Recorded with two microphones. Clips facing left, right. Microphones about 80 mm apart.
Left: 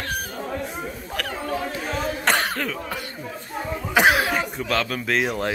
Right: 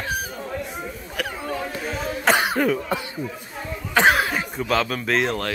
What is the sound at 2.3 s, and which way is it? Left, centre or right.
Cough, centre.